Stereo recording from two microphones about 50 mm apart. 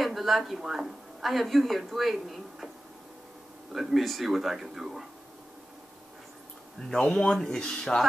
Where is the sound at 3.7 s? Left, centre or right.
Centre.